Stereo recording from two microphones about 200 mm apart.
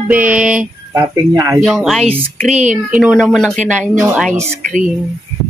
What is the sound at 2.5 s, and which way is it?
Speech, 35° right (ahead or behind).